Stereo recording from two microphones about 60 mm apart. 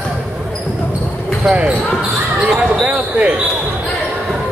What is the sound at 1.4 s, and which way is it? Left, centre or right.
Speech, centre.